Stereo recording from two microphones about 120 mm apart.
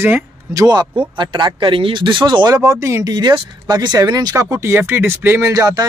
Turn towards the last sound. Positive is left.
turn(degrees=-30)  # may be behind; listen again after turning